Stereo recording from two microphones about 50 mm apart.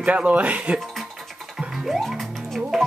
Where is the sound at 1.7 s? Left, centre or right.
Centre.